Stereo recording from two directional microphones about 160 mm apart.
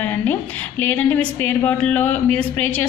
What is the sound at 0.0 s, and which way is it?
A woman's voice, 10° left (ahead or behind).